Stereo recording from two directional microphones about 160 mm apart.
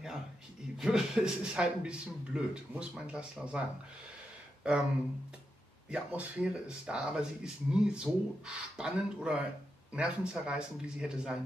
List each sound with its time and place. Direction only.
0.7 s speech: 5° right (ahead or behind)
4.6 s speech: 5° right (ahead or behind)
5.9 s speech: 5° right (ahead or behind)